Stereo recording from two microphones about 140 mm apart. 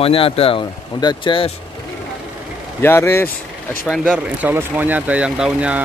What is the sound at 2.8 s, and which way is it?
Speech, 15° left (ahead or behind).